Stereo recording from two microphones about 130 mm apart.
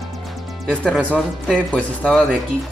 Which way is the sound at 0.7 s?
5° left (ahead or behind).